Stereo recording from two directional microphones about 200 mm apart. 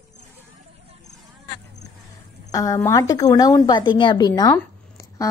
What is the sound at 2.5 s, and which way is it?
A woman's voice, 15° left (ahead or behind).